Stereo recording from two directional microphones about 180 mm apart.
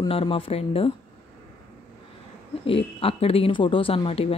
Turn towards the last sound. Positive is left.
turn(degrees=30)  # may be behind; listen again after turning